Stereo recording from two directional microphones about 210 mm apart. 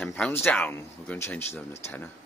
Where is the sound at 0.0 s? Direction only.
10° left (ahead or behind).